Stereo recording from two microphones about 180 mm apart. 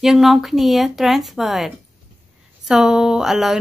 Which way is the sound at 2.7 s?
5° right (ahead or behind).